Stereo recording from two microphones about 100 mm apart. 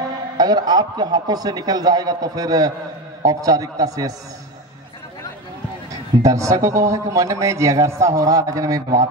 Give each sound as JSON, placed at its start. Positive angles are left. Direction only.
{"t": 0.4, "sound": "a man's voice", "side_deg": -45}
{"t": 6.2, "sound": "a man's voice", "side_deg": -35}